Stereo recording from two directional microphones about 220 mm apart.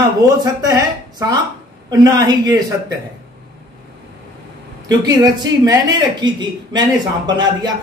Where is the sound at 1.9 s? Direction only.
15° right (ahead or behind).